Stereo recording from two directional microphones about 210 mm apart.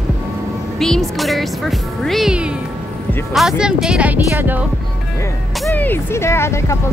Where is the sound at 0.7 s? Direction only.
Centre (ahead or behind).